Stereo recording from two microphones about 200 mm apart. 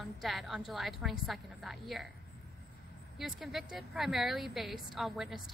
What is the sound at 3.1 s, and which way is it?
A woman's voice, centre (ahead or behind).